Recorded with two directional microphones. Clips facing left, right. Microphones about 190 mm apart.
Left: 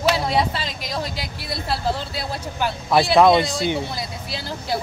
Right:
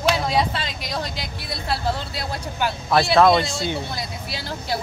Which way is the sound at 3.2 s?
15° left (ahead or behind).